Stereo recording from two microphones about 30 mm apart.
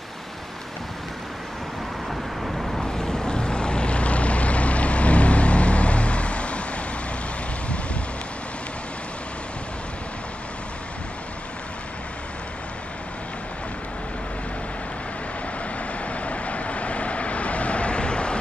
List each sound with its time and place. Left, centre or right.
2.0 s vehicle: centre
2.8 s vehicle: left
16.1 s vehicle: left